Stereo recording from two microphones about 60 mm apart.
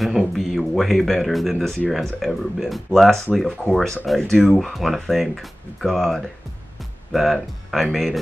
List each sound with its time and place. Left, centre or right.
0.0 s a sound: centre
1.9 s speech: centre
4.6 s speech: centre